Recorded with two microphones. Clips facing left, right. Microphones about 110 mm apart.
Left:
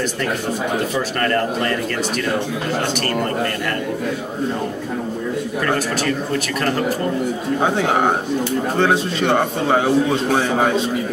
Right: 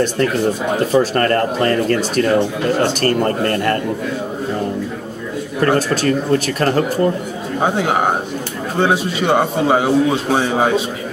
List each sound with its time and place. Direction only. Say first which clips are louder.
0.9 s speech: right 9 dB; 40° right (ahead or behind)
5.6 s speech: right 7 dB; 40° right (ahead or behind)
7.6 s a man's voice: right 2 dB; 5° right (ahead or behind)